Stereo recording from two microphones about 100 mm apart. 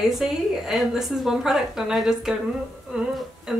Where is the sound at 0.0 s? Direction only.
5° right (ahead or behind).